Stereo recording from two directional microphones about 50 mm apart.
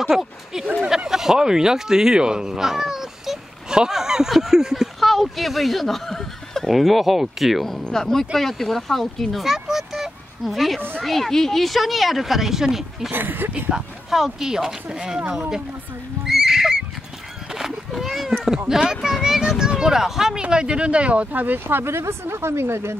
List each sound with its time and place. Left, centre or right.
0.0 s a sound: centre
0.8 s speech: centre
13.1 s speech: right
13.7 s speech: centre
16.3 s neigh: centre
17.5 s cat: centre
18.7 s speech: centre
20.4 s speech: right